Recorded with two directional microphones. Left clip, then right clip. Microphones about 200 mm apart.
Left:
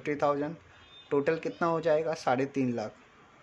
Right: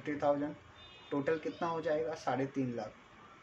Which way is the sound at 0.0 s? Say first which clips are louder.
Left 4 dB; 50° left (ahead or behind).